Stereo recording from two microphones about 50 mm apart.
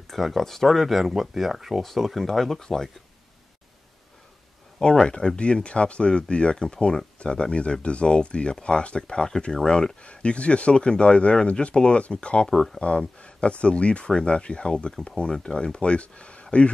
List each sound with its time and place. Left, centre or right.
0.1 s speech: centre
4.7 s speech: centre
12.4 s speech: centre
12.8 s speech: left